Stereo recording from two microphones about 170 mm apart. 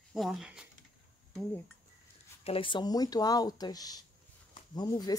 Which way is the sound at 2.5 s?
30° left (ahead or behind).